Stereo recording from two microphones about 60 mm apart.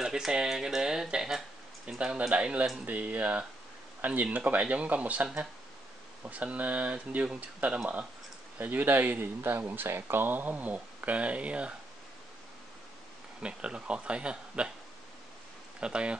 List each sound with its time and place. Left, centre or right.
0.0 s speech: centre
8.5 s speech: right
13.4 s speech: centre
15.8 s speech: centre